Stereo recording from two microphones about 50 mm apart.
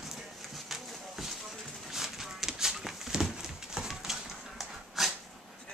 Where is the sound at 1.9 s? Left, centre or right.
Centre.